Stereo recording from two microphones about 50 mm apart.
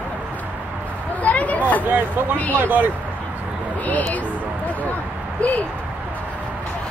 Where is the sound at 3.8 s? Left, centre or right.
Left.